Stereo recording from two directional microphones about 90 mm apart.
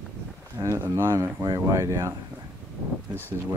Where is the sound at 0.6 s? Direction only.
35° right (ahead or behind).